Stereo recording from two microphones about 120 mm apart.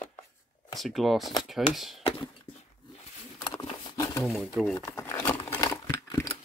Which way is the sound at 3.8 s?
30° left (ahead or behind).